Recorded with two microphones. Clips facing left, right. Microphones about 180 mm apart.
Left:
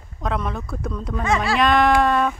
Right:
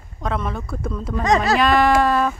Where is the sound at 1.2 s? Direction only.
40° right (ahead or behind).